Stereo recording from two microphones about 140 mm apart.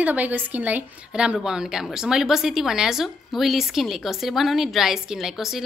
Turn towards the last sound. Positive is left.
turn(degrees=0)  # may be behind; listen again after turning